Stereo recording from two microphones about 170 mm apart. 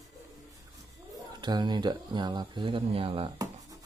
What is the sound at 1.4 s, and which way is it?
Speech, 25° right (ahead or behind).